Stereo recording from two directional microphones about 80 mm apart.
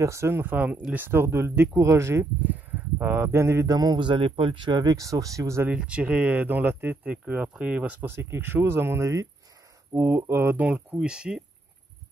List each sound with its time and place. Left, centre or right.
0.0 s speech: right
3.6 s speech: right
4.0 s speech: right
5.0 s speech: right
5.8 s speech: centre
8.1 s speech: right
11.0 s speech: centre